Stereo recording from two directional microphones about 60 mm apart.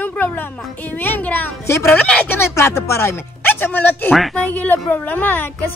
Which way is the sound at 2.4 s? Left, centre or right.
Left.